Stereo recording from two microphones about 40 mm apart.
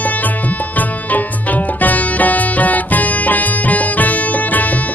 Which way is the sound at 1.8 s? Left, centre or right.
Left.